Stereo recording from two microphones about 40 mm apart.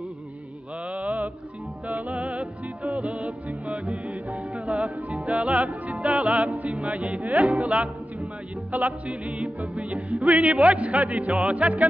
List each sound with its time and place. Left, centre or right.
0.9 s music: right